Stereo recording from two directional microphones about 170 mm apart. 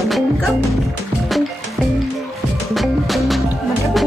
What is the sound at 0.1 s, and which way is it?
Music, centre (ahead or behind).